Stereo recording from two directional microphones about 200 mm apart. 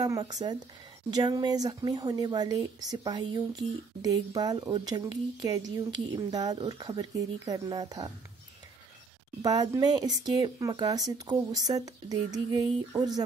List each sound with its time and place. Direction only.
0.0 s speech: 20° right (ahead or behind)
9.4 s speech: 20° right (ahead or behind)